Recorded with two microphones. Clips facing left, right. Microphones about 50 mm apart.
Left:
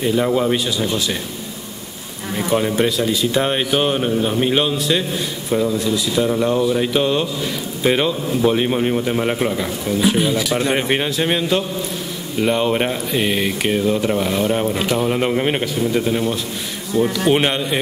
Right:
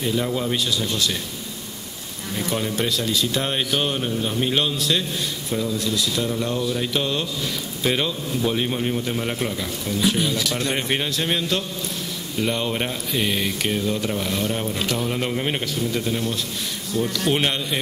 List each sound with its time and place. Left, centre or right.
0.0 s speech: left
2.3 s speech: centre